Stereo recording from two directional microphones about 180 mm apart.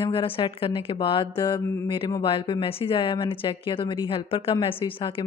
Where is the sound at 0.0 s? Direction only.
30° left (ahead or behind).